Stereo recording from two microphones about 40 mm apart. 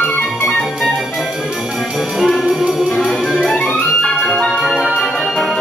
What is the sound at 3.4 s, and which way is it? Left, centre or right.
Music, centre.